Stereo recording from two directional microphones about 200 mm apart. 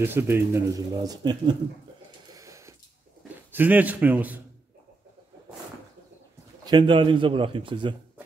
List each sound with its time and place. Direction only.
0.0 s a man's voice: 10° right (ahead or behind)
2.3 s a sound: 15° right (ahead or behind)
3.5 s a man's voice: 10° right (ahead or behind)
6.6 s a man's voice: 25° right (ahead or behind)